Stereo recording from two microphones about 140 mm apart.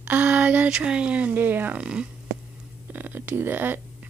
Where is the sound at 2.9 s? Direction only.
10° right (ahead or behind).